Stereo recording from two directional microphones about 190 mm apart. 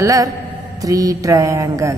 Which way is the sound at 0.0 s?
15° right (ahead or behind).